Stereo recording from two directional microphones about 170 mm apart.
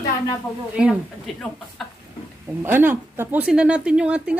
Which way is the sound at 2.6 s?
10° right (ahead or behind).